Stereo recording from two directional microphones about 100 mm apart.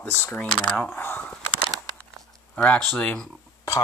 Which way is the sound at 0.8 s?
20° left (ahead or behind).